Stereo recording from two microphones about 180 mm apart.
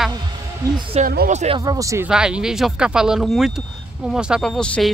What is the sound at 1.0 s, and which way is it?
Speech, 50° right (ahead or behind).